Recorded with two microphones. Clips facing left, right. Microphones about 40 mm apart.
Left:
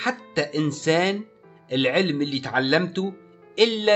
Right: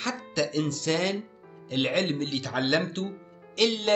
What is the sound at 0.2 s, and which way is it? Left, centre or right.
Speech, left.